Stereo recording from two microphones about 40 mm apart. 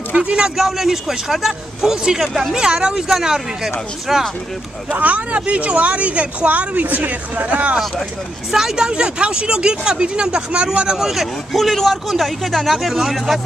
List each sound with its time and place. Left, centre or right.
0.1 s speech: right
0.6 s speech: centre
2.2 s speech: centre
2.5 s speech: right
3.1 s speech: centre
4.9 s speech: right
8.5 s speech: centre
11.0 s speech: centre